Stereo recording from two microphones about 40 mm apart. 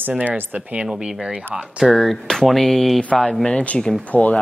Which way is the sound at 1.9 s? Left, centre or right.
Centre.